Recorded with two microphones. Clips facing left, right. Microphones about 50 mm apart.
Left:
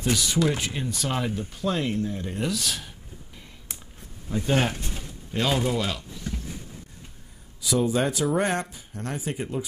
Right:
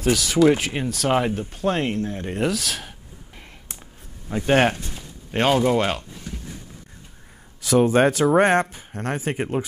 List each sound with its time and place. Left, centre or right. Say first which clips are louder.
0.1 s speech: right 4 dB; right
0.6 s speech: right 4 dB; right
1.0 s speech: right 9 dB; right
2.3 s speech: right 7 dB; right
4.3 s speech: right 6 dB; right
7.6 s speech: right 7 dB; right